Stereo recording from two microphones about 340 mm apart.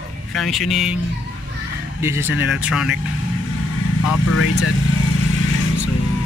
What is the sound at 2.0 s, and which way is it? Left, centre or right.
Speech, centre.